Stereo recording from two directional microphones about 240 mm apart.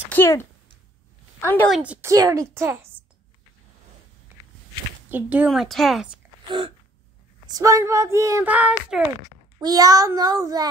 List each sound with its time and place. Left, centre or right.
0.1 s a woman's voice: centre
1.8 s speech: centre
5.1 s a woman's voice: centre
6.2 s a sound: centre
7.4 s speech: centre